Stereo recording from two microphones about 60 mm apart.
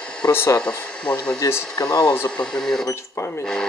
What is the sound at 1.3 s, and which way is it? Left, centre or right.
Speech, left.